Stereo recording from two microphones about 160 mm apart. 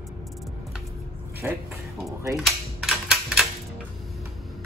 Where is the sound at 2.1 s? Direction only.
20° right (ahead or behind).